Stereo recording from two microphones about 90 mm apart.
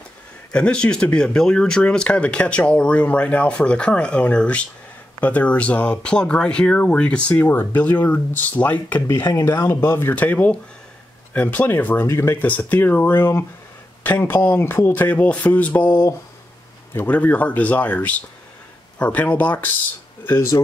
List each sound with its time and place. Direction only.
0.5 s speech: 10° left (ahead or behind)
9.4 s speech: 30° left (ahead or behind)
12.4 s speech: 15° left (ahead or behind)
20.2 s speech: 35° left (ahead or behind)